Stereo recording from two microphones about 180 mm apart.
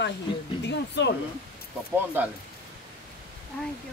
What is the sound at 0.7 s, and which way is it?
Speech, 75° left (ahead or behind).